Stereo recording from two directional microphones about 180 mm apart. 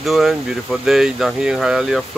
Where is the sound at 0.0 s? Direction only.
Centre (ahead or behind).